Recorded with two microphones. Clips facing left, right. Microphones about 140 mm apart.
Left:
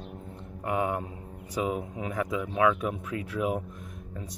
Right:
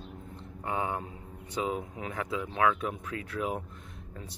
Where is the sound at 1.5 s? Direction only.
10° left (ahead or behind).